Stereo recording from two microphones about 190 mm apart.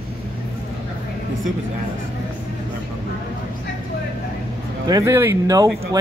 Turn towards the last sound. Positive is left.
turn(degrees=-20)  # may be behind; listen again after turning